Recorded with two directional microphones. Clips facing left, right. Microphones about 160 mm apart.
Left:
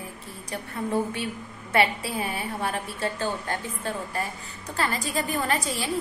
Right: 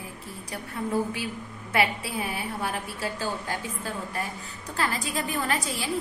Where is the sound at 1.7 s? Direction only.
Centre (ahead or behind).